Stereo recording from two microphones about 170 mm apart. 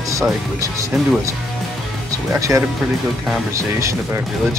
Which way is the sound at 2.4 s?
20° right (ahead or behind).